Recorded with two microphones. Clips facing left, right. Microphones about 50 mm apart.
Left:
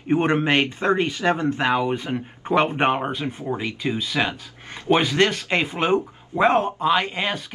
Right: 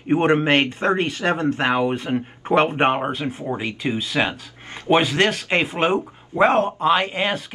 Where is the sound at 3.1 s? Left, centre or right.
Right.